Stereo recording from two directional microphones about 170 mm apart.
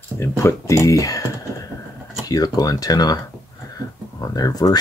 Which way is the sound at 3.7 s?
20° left (ahead or behind).